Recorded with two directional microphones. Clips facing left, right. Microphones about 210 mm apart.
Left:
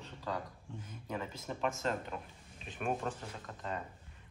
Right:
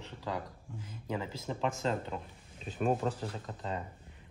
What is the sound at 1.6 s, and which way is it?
Speech, 30° right (ahead or behind).